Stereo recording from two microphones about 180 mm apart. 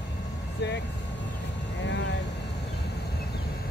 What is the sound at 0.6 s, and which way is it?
Speech, 70° left (ahead or behind).